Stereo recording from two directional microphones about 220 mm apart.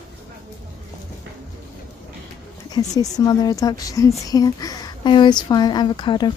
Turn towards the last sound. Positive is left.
turn(degrees=20)  # may be behind; listen again after turning